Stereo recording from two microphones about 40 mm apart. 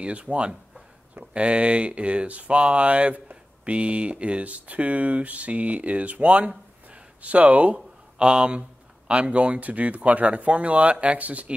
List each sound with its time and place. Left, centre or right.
0.0 s speech: right
7.7 s speech: right